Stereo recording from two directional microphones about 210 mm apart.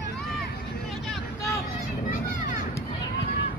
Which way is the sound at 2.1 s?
40° left (ahead or behind).